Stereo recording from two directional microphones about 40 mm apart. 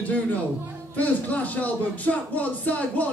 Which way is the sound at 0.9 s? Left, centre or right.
Left.